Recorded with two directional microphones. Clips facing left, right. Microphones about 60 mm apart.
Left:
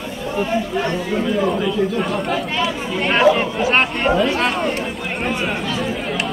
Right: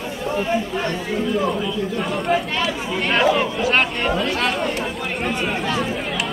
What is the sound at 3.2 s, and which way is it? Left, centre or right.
Speech, centre.